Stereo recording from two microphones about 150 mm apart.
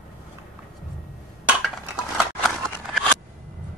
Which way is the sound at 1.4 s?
10° right (ahead or behind).